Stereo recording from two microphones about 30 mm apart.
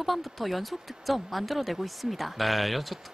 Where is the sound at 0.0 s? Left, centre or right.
Centre.